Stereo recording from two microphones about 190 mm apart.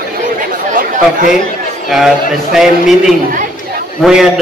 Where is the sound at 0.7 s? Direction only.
45° right (ahead or behind).